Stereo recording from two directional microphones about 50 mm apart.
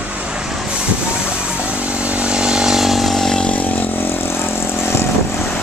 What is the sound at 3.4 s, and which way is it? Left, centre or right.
Vehicle, left.